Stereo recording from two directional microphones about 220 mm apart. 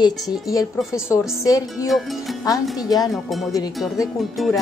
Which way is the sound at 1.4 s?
15° left (ahead or behind).